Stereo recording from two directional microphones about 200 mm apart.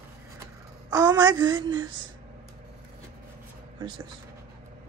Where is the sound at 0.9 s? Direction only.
20° right (ahead or behind).